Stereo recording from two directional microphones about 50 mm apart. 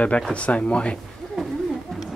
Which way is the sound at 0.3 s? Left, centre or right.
Left.